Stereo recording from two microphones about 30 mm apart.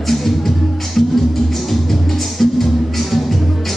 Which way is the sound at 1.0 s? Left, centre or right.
Centre.